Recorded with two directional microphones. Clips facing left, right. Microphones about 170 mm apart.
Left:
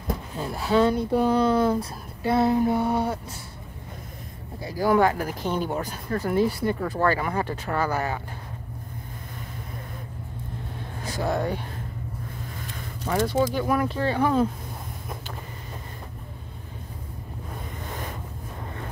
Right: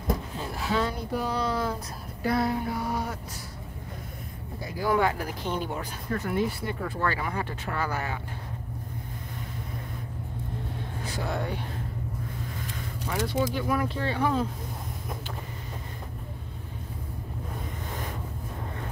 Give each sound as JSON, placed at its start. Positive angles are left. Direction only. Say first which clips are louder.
{"t": 0.6, "sound": "a sound", "louder": "left 8 dB", "side_deg": 30}
{"t": 1.2, "sound": "speech", "louder": "left 8 dB", "side_deg": 55}
{"t": 1.6, "sound": "a sound", "louder": "left 8 dB", "side_deg": 25}
{"t": 4.6, "sound": "speech", "louder": "left 5 dB", "side_deg": 40}
{"t": 11.1, "sound": "speech", "louder": "left 6 dB", "side_deg": 45}
{"t": 13.1, "sound": "speech", "louder": "left 5 dB", "side_deg": 45}